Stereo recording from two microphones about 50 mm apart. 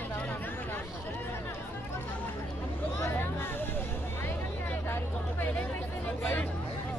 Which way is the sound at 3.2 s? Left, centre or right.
Left.